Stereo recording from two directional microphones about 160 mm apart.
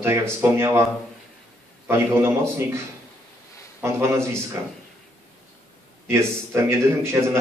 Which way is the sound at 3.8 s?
15° right (ahead or behind).